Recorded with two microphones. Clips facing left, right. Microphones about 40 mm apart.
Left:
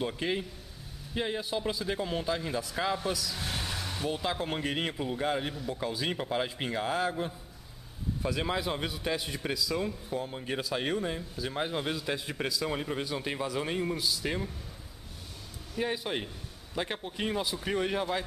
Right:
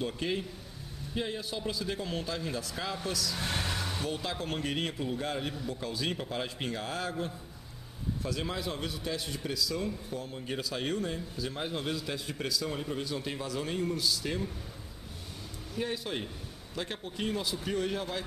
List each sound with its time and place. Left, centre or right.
0.0 s a man's voice: centre
3.3 s vehicle: centre
4.1 s a man's voice: centre
15.8 s a man's voice: centre